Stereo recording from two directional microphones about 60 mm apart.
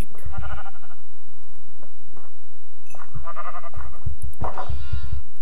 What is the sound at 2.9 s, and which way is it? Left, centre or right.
Sheep, centre.